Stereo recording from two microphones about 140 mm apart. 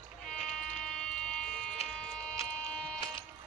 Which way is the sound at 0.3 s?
Centre (ahead or behind).